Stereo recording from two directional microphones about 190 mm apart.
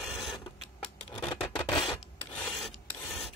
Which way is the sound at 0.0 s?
Centre (ahead or behind).